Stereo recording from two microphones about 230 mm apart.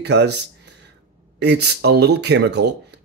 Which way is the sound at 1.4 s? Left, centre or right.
Right.